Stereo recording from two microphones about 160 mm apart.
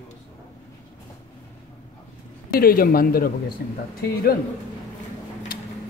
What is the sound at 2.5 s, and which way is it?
A man's voice, 65° left (ahead or behind).